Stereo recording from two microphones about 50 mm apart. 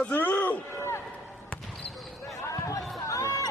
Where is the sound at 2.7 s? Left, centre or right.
Left.